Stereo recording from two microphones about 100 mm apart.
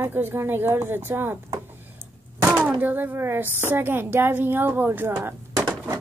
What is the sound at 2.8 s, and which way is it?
A woman's voice, 20° right (ahead or behind).